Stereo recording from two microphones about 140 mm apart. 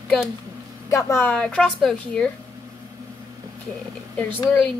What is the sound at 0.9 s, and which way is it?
Speech, 20° left (ahead or behind).